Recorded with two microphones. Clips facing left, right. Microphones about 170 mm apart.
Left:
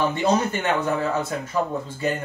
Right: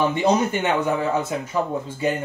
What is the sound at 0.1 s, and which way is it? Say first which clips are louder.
Speech: right 2 dB; 15° right (ahead or behind).